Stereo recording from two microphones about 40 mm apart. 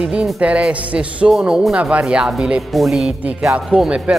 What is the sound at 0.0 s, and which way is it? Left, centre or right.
Speech, right.